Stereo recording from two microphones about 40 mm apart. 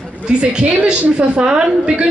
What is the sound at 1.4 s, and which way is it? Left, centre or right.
Speech, right.